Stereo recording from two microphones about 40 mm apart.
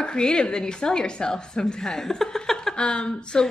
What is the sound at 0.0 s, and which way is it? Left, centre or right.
A woman's voice, left.